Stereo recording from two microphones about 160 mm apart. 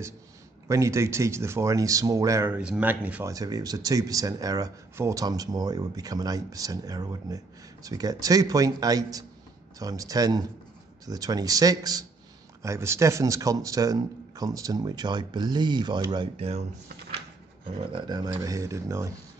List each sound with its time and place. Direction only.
0.7 s speech: 20° right (ahead or behind)
3.3 s speech: 25° right (ahead or behind); by 16.6 s 40° right (ahead or behind)
17.9 s speech: 25° right (ahead or behind)